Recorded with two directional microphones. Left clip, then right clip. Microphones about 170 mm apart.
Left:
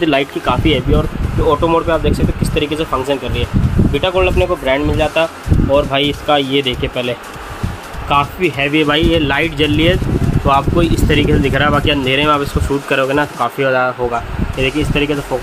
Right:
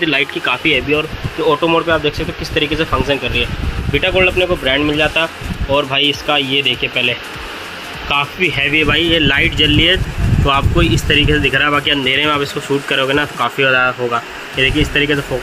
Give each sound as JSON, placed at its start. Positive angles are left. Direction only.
{"t": 0.0, "sound": "speech", "side_deg": 25}
{"t": 0.5, "sound": "speech", "side_deg": 15}